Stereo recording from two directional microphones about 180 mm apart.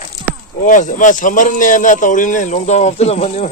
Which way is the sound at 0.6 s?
45° left (ahead or behind).